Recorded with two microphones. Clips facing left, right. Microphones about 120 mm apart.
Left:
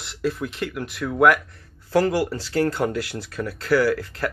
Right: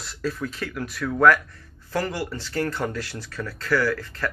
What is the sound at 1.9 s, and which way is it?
Speech, 35° left (ahead or behind).